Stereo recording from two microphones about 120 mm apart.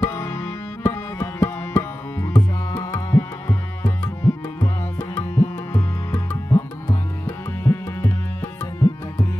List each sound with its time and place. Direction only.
0.0 s music: 20° left (ahead or behind)
1.1 s tabla: 25° left (ahead or behind)